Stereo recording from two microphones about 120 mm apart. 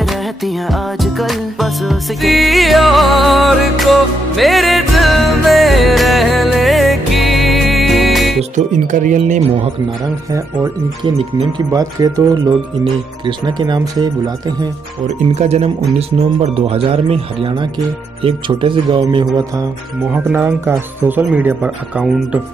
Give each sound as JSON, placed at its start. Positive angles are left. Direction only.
{"t": 0.0, "sound": "music", "side_deg": 0}
{"t": 8.5, "sound": "speech", "side_deg": -90}
{"t": 11.5, "sound": "speech", "side_deg": -30}
{"t": 12.8, "sound": "speech", "side_deg": -40}
{"t": 15.0, "sound": "speech", "side_deg": -65}
{"t": 20.2, "sound": "speech", "side_deg": -15}